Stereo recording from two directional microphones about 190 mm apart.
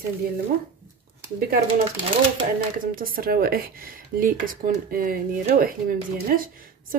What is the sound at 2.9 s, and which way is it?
Speech, 50° right (ahead or behind).